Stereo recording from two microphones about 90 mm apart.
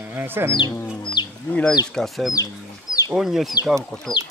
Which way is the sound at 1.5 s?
10° left (ahead or behind).